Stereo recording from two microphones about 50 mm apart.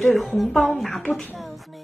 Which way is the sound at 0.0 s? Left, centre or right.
Centre.